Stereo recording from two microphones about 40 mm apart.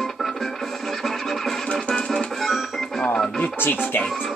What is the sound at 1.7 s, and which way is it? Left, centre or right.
Music, left.